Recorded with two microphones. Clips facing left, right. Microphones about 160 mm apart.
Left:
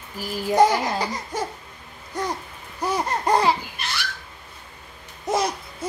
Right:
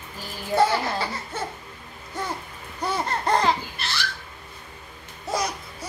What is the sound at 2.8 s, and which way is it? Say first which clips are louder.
Laughter: left 2 dB; 10° left (ahead or behind).